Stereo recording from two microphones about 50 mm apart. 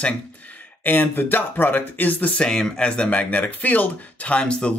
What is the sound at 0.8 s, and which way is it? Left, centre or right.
Speech, left.